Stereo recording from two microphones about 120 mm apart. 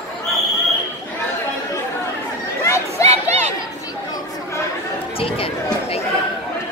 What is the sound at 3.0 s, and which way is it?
Chatter, 65° right (ahead or behind).